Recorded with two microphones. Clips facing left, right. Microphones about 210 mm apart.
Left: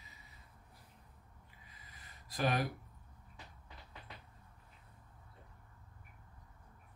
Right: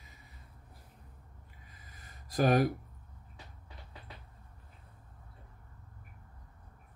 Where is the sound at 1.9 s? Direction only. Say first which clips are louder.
Right 4 dB; 45° right (ahead or behind).